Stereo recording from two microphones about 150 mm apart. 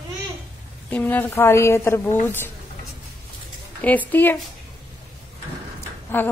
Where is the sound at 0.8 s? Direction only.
10° left (ahead or behind).